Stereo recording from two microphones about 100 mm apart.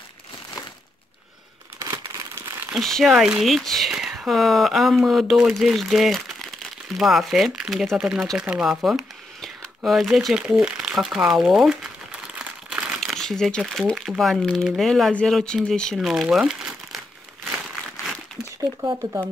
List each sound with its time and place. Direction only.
1.8 s crumpling: 35° right (ahead or behind)
2.7 s speech: centre (ahead or behind)
8.5 s a sound: 5° right (ahead or behind)
9.8 s crumpling: centre (ahead or behind)
13.6 s speech: centre (ahead or behind)
16.1 s crumpling: 5° right (ahead or behind)